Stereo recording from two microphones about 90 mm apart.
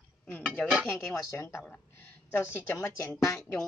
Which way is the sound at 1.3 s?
30° left (ahead or behind).